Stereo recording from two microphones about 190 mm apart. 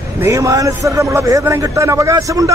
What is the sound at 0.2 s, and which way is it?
Speech, 15° right (ahead or behind).